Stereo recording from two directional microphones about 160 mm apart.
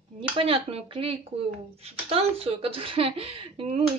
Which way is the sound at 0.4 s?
40° right (ahead or behind).